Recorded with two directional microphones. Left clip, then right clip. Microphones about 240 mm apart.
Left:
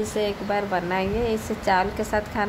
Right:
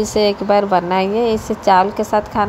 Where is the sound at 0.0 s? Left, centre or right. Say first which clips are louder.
Right 10 dB; right.